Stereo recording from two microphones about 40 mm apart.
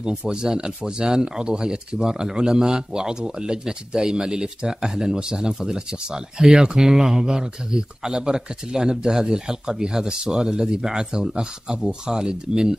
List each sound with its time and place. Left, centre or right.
0.3 s speech: centre